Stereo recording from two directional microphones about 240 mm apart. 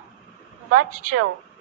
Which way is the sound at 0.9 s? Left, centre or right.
Right.